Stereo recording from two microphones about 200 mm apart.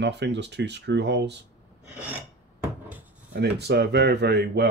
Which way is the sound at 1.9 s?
10° right (ahead or behind).